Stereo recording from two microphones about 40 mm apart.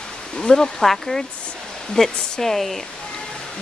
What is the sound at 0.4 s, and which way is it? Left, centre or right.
Speech, centre.